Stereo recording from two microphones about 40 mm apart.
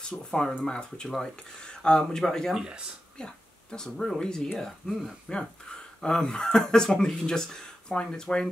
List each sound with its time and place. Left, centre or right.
0.1 s speech: left
4.6 s speech: centre
5.3 s speech: centre